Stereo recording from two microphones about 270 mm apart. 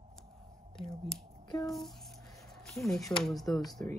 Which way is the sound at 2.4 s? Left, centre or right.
Centre.